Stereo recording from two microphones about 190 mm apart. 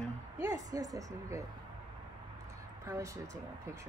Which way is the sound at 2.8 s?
15° right (ahead or behind).